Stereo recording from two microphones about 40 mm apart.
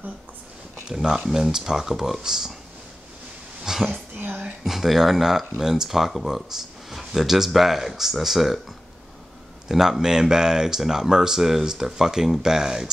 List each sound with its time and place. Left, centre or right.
0.8 s speech: centre
3.6 s speech: centre
4.2 s a sound: right
4.6 s speech: centre
9.7 s speech: centre